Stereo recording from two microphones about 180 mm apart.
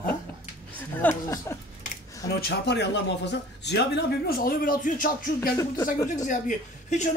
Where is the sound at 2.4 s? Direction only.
70° left (ahead or behind).